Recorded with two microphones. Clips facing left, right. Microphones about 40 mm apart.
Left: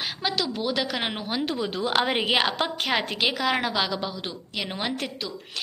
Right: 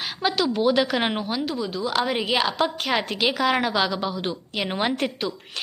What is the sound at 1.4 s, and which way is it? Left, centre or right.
Speech, left.